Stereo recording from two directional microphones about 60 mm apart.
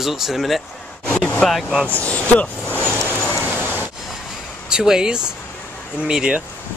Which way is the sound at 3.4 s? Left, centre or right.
Right.